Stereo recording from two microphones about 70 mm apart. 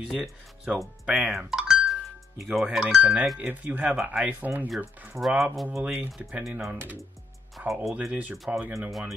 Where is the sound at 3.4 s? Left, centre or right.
Right.